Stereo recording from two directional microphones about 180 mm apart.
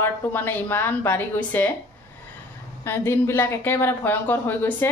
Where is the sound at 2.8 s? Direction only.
15° left (ahead or behind).